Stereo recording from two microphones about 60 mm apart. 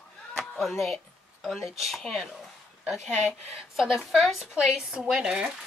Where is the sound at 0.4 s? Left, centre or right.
Centre.